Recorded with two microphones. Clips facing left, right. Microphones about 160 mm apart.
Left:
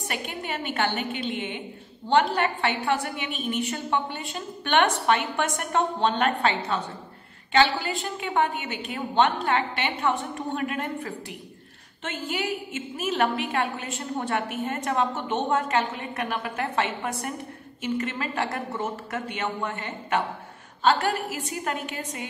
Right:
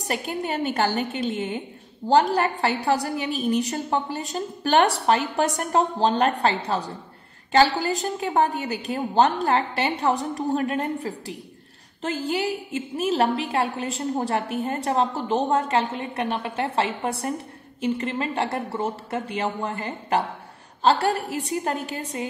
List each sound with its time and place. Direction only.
0.0 s a woman's voice: 35° right (ahead or behind)